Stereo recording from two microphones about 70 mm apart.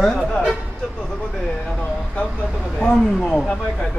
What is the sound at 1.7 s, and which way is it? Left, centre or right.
Speech, centre.